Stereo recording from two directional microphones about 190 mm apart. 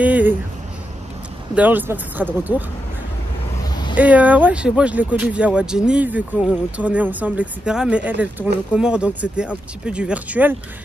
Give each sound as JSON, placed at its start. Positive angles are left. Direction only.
{"t": 0.0, "sound": "a sound", "side_deg": -10}
{"t": 1.5, "sound": "speech", "side_deg": -10}
{"t": 3.9, "sound": "speech", "side_deg": -10}